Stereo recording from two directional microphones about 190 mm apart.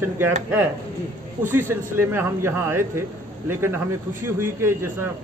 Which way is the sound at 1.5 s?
10° right (ahead or behind).